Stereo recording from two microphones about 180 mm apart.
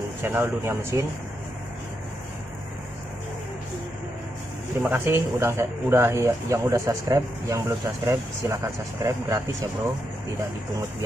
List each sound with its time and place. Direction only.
0.2 s speech: 10° right (ahead or behind)
4.8 s speech: 10° right (ahead or behind)